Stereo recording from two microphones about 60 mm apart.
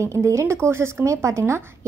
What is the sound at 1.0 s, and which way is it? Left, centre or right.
Speech, right.